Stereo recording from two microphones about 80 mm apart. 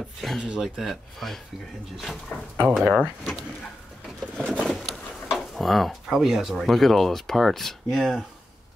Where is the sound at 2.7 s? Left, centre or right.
Centre.